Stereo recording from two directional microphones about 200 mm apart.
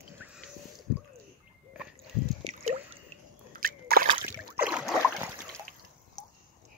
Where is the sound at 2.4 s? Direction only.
30° right (ahead or behind).